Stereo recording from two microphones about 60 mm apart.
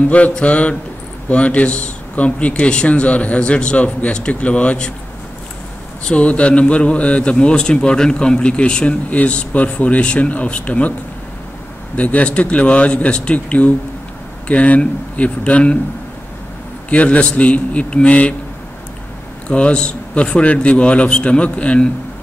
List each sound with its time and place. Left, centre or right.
0.1 s a man's voice: left
6.0 s a man's voice: left
12.0 s a man's voice: left
16.9 s a man's voice: left
19.4 s a man's voice: centre